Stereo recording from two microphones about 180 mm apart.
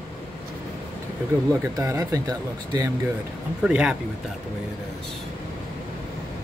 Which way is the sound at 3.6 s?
5° right (ahead or behind).